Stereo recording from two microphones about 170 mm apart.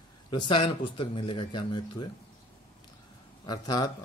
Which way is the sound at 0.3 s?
30° left (ahead or behind).